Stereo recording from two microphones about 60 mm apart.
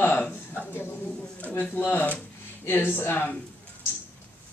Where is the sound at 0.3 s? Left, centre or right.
Left.